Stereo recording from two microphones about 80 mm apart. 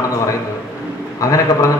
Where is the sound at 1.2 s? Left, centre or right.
Left.